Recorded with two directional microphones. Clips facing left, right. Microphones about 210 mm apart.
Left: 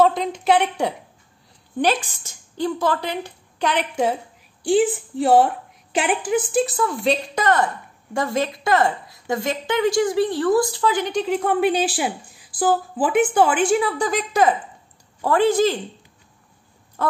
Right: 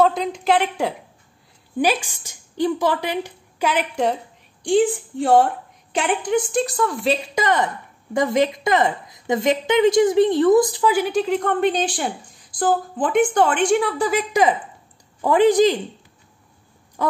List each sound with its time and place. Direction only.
0.0 s a woman's voice: centre (ahead or behind)
7.3 s a woman's voice: 15° right (ahead or behind)